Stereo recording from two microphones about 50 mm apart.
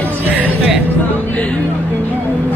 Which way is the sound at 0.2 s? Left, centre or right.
Right.